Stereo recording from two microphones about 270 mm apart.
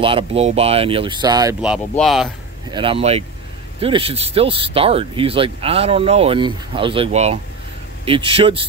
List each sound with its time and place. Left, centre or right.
0.0 s speech: right; by 2.3 s centre
2.7 s speech: centre